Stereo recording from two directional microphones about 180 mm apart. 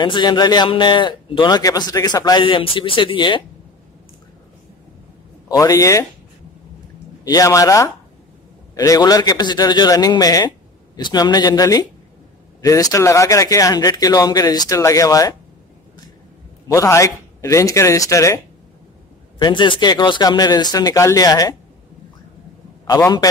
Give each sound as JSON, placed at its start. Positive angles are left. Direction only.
{"t": 0.0, "sound": "a man's voice", "side_deg": 25}
{"t": 5.5, "sound": "speech", "side_deg": 20}
{"t": 7.2, "sound": "a man's voice", "side_deg": 20}
{"t": 16.6, "sound": "a man's voice", "side_deg": 20}
{"t": 22.8, "sound": "a man's voice", "side_deg": 20}